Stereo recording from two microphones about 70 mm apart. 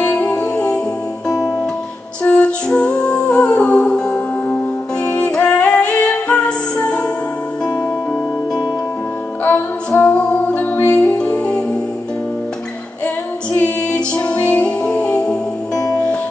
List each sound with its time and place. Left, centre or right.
0.0 s music: centre
2.2 s music: centre
9.9 s music: left
11.0 s music: centre
13.6 s music: centre
15.7 s music: left